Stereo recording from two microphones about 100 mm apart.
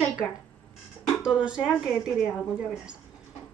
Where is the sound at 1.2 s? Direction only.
10° right (ahead or behind).